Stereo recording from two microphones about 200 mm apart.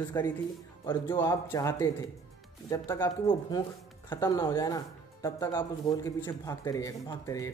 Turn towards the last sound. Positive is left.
turn(degrees=15)  # may be behind; listen again after turning